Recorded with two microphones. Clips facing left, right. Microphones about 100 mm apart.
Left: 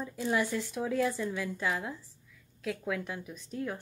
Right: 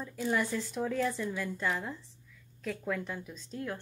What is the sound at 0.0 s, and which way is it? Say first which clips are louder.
A woman's voice: left 1 dB; 10° left (ahead or behind).